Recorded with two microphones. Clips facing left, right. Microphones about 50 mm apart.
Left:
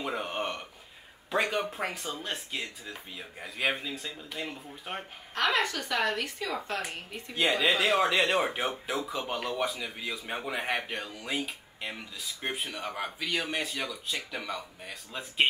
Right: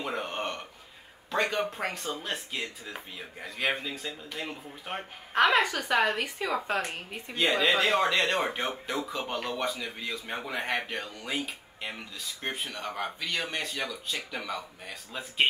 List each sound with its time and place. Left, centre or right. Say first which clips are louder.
0.0 s a sound: even; centre
1.3 s speech: even; centre
5.3 s a woman's voice: right 4 dB; centre
7.3 s speech: right 1 dB; centre